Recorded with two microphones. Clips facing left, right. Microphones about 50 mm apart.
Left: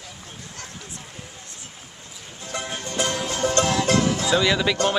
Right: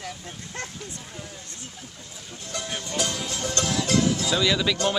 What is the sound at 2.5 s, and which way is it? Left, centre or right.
Music, left.